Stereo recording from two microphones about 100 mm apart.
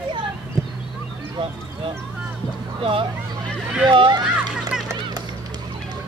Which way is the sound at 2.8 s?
60° right (ahead or behind).